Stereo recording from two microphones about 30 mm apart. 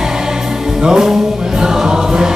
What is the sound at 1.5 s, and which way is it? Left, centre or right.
Choir, centre.